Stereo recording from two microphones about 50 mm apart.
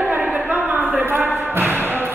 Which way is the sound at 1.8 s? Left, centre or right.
Right.